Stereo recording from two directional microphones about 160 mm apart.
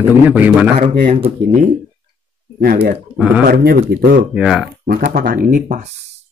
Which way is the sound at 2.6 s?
70° right (ahead or behind).